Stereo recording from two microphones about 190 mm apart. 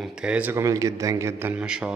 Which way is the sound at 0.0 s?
5° right (ahead or behind).